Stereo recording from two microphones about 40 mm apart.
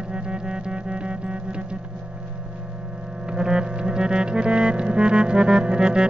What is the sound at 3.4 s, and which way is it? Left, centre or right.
Music, right.